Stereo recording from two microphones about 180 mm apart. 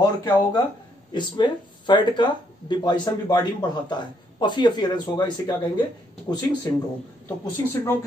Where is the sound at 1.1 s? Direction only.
25° left (ahead or behind).